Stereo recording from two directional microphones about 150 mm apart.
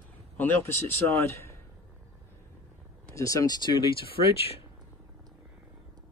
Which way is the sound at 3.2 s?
20° left (ahead or behind).